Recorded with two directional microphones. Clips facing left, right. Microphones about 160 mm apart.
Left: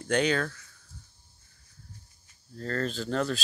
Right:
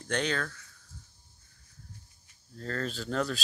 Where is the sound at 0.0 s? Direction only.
10° left (ahead or behind).